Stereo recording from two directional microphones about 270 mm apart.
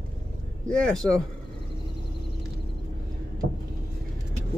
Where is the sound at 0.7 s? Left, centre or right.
Centre.